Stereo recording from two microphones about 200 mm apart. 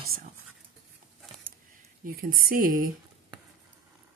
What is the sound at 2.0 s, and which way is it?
Speech, 45° right (ahead or behind).